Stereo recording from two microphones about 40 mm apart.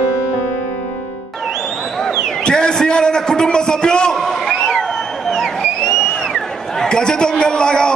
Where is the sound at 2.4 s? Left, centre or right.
Left.